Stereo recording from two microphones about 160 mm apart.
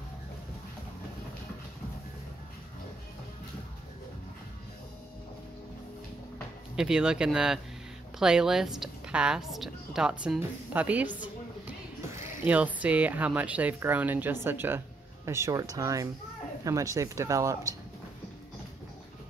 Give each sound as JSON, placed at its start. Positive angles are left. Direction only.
{"t": 6.8, "sound": "a woman's voice", "side_deg": -5}
{"t": 12.4, "sound": "speech", "side_deg": -10}